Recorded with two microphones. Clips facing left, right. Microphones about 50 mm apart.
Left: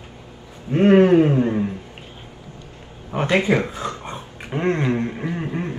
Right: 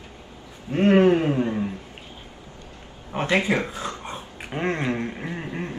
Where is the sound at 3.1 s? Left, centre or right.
Centre.